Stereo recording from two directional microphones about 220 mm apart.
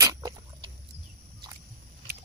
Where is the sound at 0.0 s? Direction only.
15° right (ahead or behind).